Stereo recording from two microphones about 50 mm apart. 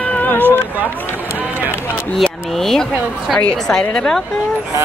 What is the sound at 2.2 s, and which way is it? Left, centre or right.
A woman's voice, centre.